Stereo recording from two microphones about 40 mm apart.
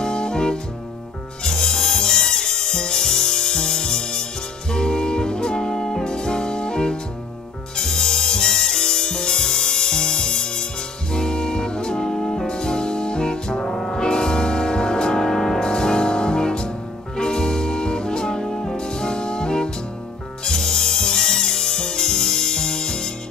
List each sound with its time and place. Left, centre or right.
0.0 s music: left